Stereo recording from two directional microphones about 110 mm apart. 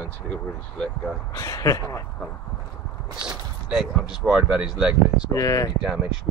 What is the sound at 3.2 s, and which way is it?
Speech, 5° right (ahead or behind).